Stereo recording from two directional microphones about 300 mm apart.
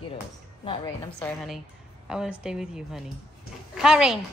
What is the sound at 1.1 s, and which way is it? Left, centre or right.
A woman's voice, centre.